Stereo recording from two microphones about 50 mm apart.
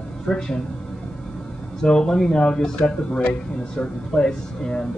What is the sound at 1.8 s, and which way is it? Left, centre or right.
Speech, centre.